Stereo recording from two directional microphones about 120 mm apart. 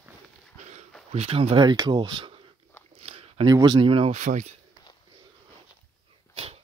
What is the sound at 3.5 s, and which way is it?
Speech, 35° right (ahead or behind).